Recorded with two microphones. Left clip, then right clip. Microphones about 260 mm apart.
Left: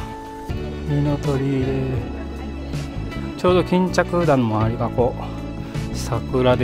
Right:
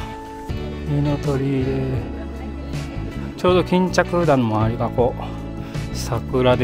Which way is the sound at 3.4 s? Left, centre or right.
Centre.